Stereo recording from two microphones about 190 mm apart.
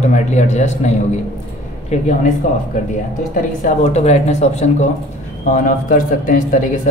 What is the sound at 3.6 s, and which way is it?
A man's voice, 40° left (ahead or behind).